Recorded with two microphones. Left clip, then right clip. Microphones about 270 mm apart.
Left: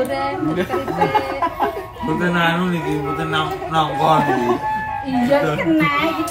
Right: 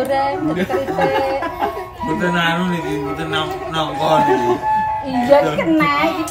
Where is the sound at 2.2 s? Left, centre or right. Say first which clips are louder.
Even; centre.